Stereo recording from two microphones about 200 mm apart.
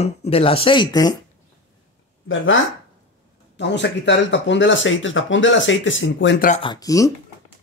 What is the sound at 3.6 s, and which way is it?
Speech, 60° left (ahead or behind).